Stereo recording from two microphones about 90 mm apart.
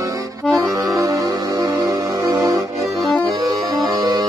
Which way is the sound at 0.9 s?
40° right (ahead or behind).